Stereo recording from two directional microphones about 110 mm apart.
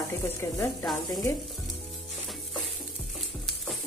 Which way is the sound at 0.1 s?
25° left (ahead or behind).